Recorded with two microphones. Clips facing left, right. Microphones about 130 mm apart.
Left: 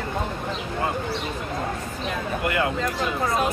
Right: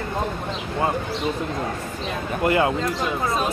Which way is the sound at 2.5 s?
30° right (ahead or behind).